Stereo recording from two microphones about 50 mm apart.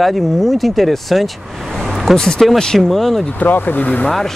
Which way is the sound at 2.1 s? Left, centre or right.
Centre.